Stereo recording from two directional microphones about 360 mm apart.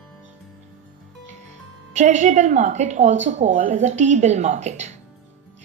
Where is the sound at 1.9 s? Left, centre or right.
Centre.